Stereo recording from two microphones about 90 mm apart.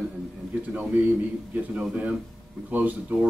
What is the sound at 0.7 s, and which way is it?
Speech, 15° right (ahead or behind).